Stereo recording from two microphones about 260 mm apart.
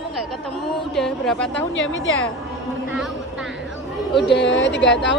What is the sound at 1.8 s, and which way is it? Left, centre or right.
Speech, left.